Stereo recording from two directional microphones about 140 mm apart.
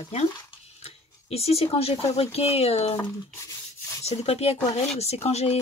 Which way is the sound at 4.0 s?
50° left (ahead or behind).